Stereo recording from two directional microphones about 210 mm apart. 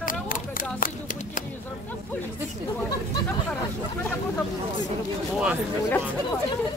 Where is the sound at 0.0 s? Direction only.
40° left (ahead or behind).